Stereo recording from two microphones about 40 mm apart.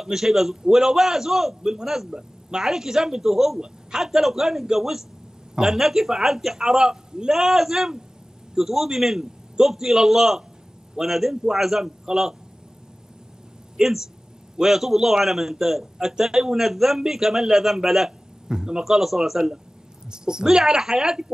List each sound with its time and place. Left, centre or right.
0.0 s a man's voice: centre
13.8 s a man's voice: centre
18.5 s a man's voice: centre